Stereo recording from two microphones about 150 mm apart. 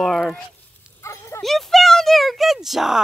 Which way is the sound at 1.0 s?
20° left (ahead or behind).